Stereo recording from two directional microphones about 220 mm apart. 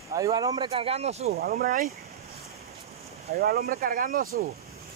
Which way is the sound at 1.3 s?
40° right (ahead or behind).